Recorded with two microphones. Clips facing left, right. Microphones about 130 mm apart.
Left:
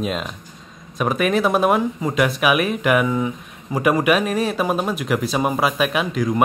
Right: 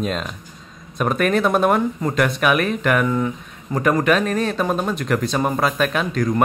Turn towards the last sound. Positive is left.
turn(degrees=5)  # may be behind; listen again after turning